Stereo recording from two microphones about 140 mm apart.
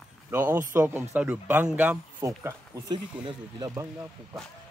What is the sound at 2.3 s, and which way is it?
Speech, 20° right (ahead or behind).